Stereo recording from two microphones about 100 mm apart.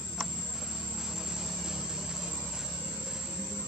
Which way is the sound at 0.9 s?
5° right (ahead or behind).